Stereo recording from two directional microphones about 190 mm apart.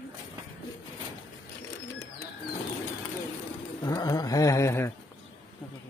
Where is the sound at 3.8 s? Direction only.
20° left (ahead or behind).